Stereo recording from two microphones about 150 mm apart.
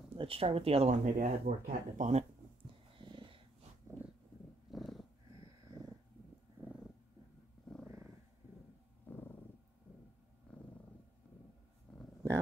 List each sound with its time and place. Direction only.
0.1 s speech: 40° right (ahead or behind)
1.0 s speech: 60° right (ahead or behind)
3.0 s dog: 35° right (ahead or behind)
3.9 s a sound: 20° right (ahead or behind)
4.6 s purr: centre (ahead or behind)
5.7 s a sound: 25° right (ahead or behind)
6.6 s a sound: 15° right (ahead or behind)
7.8 s purr: 20° right (ahead or behind)
9.1 s purr: 15° left (ahead or behind)
10.5 s purr: 5° left (ahead or behind)
11.9 s dog: 5° left (ahead or behind)